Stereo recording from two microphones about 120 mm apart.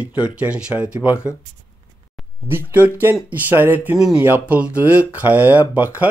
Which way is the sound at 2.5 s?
20° right (ahead or behind).